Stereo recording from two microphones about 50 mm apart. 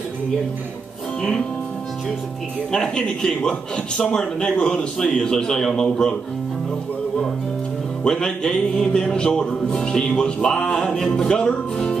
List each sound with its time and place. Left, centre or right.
2.7 s music: centre
8.0 s music: centre